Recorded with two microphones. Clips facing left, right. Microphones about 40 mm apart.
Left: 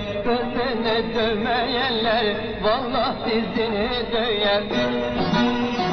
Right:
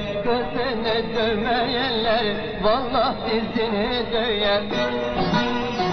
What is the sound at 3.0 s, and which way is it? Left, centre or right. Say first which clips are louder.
Music: even; centre.